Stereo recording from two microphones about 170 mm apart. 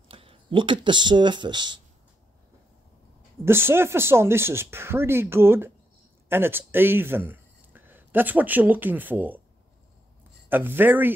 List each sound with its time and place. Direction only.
0.1 s speech: 30° right (ahead or behind)
3.4 s speech: 15° right (ahead or behind)
10.5 s speech: 10° right (ahead or behind)